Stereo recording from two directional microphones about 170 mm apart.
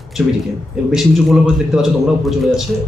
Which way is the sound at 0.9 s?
Centre (ahead or behind).